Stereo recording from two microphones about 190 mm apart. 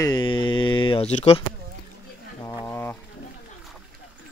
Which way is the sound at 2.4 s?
15° left (ahead or behind).